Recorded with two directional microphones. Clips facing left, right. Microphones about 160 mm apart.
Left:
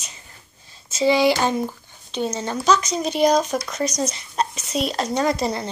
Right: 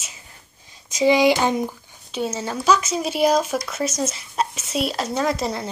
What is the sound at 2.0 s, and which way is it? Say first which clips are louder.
Speech: left 1 dB; 5° right (ahead or behind).